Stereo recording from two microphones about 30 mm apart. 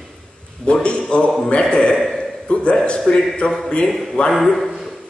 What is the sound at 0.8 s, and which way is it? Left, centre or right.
A man's voice, left.